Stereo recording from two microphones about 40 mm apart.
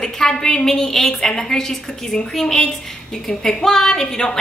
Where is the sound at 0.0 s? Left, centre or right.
Centre.